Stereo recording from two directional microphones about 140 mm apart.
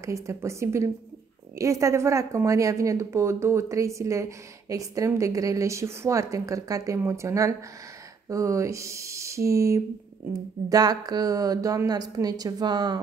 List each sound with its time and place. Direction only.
0.0 s a woman's voice: 20° right (ahead or behind)